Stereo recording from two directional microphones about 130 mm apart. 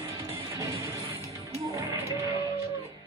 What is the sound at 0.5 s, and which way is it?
Music, 25° right (ahead or behind).